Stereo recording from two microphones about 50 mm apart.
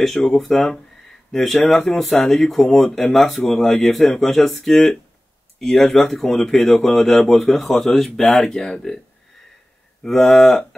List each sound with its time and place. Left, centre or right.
0.3 s speech: centre
8.5 s speech: centre
10.0 s speech: centre